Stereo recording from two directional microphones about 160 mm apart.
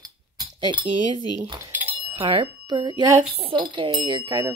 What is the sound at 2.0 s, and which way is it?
Speech, 25° right (ahead or behind).